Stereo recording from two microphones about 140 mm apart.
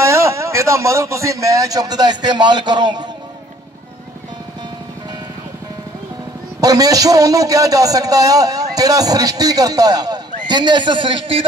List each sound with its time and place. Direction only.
0.0 s a man's voice: 20° right (ahead or behind)
6.6 s a man's voice: 25° right (ahead or behind)